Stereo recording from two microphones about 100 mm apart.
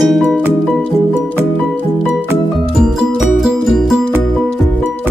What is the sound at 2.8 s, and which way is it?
Music, 5° right (ahead or behind).